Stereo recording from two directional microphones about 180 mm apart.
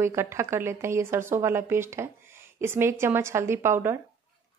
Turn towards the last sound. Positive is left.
turn(degrees=-15)  # may be behind; listen again after turning